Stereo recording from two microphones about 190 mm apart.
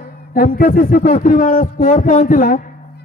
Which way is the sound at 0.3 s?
50° left (ahead or behind).